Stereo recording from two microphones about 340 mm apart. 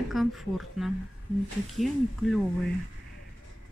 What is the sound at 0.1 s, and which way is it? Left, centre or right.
Speech, centre.